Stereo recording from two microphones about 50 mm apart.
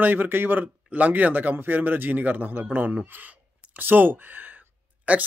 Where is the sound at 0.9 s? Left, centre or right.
Right.